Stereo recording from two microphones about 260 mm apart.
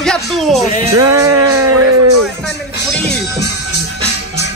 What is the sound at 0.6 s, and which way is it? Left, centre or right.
Music, left.